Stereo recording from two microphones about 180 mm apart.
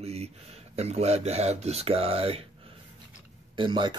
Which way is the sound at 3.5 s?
25° right (ahead or behind).